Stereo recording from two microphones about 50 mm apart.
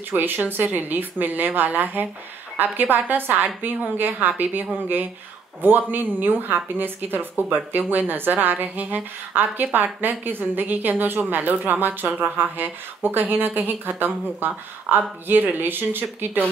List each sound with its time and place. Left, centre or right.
0.1 s a woman's voice: right